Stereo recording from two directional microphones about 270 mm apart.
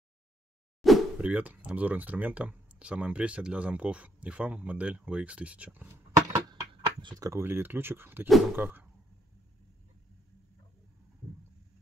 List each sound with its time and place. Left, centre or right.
0.8 s speech: centre
6.3 s speech: centre